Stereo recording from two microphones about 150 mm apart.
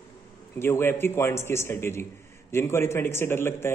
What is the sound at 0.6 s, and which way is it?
A man's voice, 15° left (ahead or behind).